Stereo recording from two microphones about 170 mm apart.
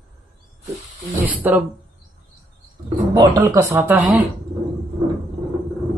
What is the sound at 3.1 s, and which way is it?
Speech, 20° right (ahead or behind).